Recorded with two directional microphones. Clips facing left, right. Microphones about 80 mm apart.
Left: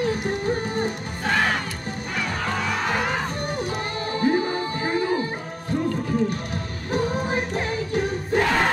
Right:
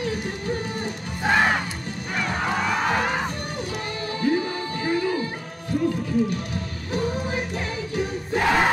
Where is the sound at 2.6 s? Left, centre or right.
Centre.